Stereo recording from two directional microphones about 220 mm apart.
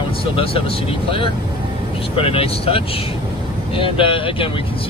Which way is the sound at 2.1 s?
25° left (ahead or behind).